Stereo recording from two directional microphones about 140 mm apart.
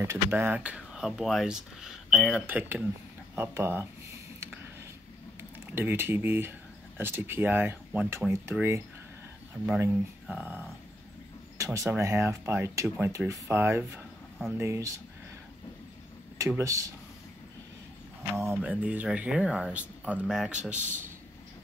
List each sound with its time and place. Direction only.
0.0 s speech: 20° right (ahead or behind); by 2.4 s centre (ahead or behind)
2.4 s speech: 15° right (ahead or behind)
3.3 s a sound: 15° right (ahead or behind)
5.4 s speech: 15° right (ahead or behind)
10.2 s music: 10° right (ahead or behind)
11.5 s a sound: 25° right (ahead or behind)
11.9 s speech: 20° right (ahead or behind)
16.3 s speech: 20° right (ahead or behind)
18.3 s speech: 15° right (ahead or behind)